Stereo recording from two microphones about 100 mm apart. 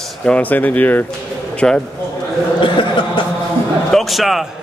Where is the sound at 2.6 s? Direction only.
55° left (ahead or behind).